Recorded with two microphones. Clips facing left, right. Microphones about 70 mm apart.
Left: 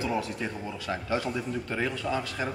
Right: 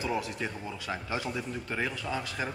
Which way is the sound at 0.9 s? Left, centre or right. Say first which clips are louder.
Left 5 dB; centre.